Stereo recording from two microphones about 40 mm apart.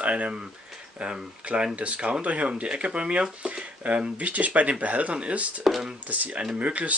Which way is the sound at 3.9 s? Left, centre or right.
Right.